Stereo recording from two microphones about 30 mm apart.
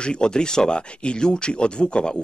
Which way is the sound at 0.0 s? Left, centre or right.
Left.